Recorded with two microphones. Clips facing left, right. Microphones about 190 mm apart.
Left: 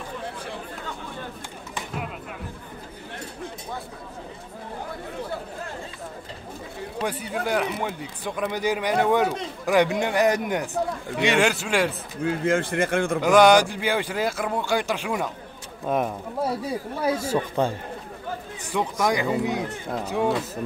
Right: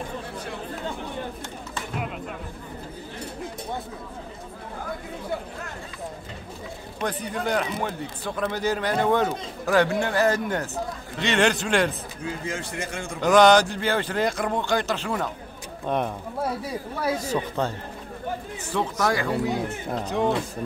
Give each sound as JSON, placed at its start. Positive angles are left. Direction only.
{"t": 7.1, "sound": "speech", "side_deg": 10}
{"t": 12.2, "sound": "speech", "side_deg": 55}
{"t": 13.2, "sound": "speech", "side_deg": 10}